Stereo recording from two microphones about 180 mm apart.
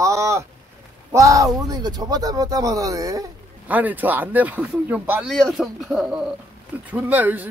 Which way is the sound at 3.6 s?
10° right (ahead or behind).